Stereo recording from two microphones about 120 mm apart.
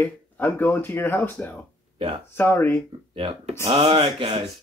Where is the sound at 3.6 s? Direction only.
55° right (ahead or behind).